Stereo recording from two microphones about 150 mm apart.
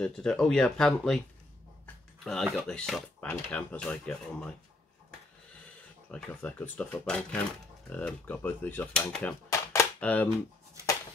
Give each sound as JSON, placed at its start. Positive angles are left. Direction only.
{"t": 0.0, "sound": "speech", "side_deg": 5}
{"t": 2.2, "sound": "speech", "side_deg": 0}
{"t": 6.1, "sound": "speech", "side_deg": 10}
{"t": 9.5, "sound": "a sound", "side_deg": 20}
{"t": 9.9, "sound": "speech", "side_deg": 10}